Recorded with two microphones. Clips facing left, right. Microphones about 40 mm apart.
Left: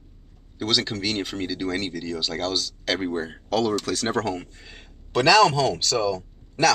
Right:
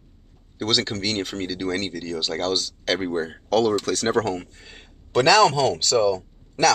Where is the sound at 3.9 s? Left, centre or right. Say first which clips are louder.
Right 3 dB; centre.